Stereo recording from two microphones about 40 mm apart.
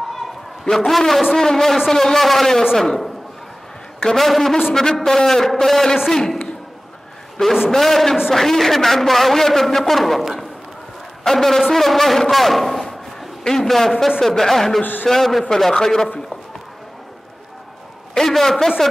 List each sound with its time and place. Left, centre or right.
0.7 s speech: centre
7.4 s speech: centre
7.7 s a man's voice: centre
12.6 s a sound: centre
14.2 s speech: centre
14.8 s a man's voice: left
15.0 s speech: centre
18.1 s speech: centre